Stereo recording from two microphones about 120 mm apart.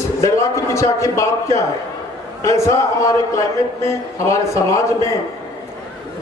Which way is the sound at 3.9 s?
25° left (ahead or behind).